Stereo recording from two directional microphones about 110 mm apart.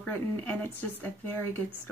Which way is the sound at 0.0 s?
15° left (ahead or behind).